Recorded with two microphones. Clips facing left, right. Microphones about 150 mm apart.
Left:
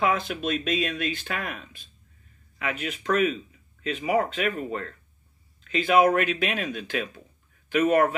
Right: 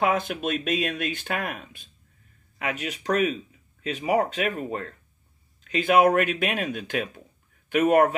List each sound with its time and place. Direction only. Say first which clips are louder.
0.0 s speech: right 1 dB; 50° right (ahead or behind)